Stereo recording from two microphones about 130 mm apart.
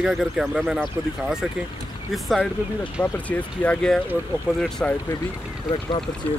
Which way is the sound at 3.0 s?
10° left (ahead or behind).